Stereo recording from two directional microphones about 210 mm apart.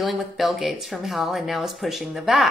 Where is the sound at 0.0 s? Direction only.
Centre (ahead or behind).